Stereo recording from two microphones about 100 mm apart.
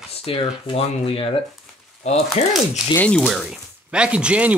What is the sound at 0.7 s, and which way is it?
Speech, 70° left (ahead or behind).